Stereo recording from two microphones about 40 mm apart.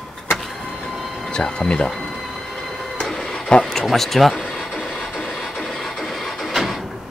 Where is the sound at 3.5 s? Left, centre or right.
Left.